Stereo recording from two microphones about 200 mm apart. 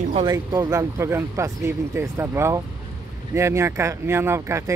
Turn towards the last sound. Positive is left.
turn(degrees=-15)  # may be behind; listen again after turning